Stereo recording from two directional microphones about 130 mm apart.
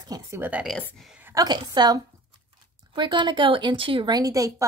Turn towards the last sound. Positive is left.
turn(degrees=-25)  # may be behind; listen again after turning